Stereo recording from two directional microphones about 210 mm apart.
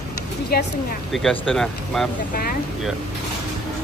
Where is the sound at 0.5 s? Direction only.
45° left (ahead or behind).